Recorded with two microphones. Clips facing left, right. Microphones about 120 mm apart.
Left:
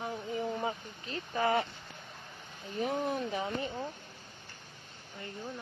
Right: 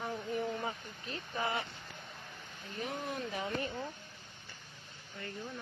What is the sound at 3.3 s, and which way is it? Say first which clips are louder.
Speech: left 3 dB; 25° left (ahead or behind).